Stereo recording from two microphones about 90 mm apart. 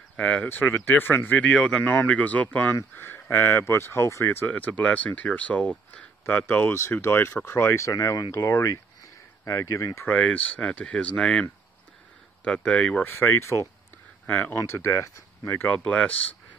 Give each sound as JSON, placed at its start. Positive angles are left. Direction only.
{"t": 0.2, "sound": "speech", "side_deg": 15}
{"t": 6.2, "sound": "speech", "side_deg": 30}
{"t": 10.0, "sound": "speech", "side_deg": 15}
{"t": 12.4, "sound": "speech", "side_deg": 15}
{"t": 15.7, "sound": "speech", "side_deg": 15}